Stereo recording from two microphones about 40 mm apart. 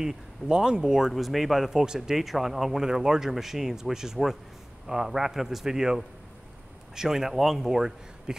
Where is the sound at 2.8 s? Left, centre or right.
Centre.